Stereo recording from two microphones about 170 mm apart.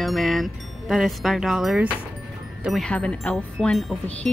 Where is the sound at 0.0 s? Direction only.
Centre (ahead or behind).